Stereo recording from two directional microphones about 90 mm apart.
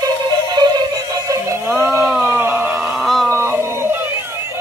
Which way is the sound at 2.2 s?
25° right (ahead or behind).